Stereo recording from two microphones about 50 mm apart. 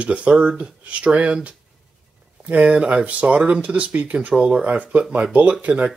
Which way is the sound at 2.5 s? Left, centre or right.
Right.